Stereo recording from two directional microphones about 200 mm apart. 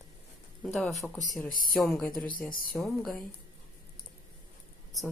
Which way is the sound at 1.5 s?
45° left (ahead or behind).